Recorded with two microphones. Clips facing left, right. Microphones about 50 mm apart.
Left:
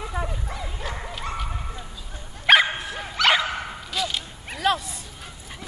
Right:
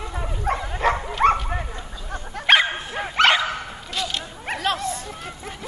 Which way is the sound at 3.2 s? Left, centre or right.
Right.